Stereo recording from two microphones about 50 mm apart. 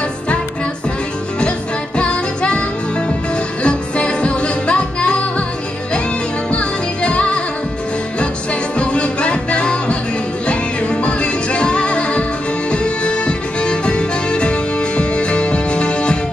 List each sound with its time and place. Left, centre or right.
2.0 s music: left
3.6 s music: left
6.5 s music: left
8.7 s music: left